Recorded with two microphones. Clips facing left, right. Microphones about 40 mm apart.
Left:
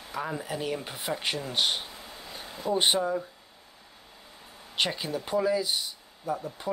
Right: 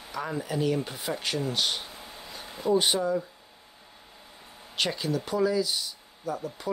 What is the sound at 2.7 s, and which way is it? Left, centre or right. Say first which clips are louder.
Speech: right 1 dB; left.